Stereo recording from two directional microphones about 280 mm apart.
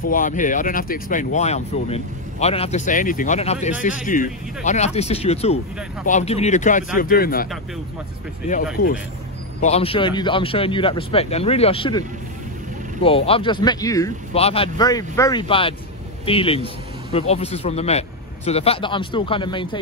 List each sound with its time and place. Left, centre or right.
0.1 s speech: left
9.6 s speech: left
13.0 s speech: centre